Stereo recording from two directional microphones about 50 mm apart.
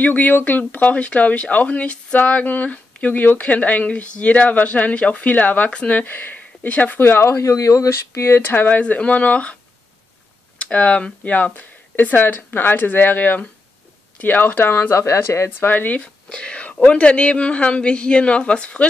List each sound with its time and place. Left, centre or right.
0.0 s speech: left
6.7 s speech: left
7.0 s speech: left
8.4 s speech: left
8.8 s a woman's voice: left
10.6 s speech: left
11.3 s speech: left
15.6 s speech: left
16.0 s a woman's voice: centre